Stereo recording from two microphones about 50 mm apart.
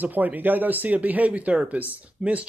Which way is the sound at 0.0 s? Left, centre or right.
Right.